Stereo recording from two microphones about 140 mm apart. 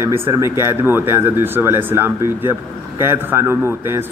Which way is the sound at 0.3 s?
20° right (ahead or behind).